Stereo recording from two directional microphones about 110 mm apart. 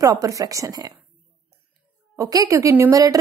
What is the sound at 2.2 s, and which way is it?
A woman's voice, 30° right (ahead or behind).